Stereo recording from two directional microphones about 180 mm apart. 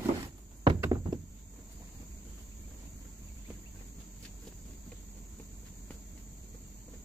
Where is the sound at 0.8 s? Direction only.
20° right (ahead or behind).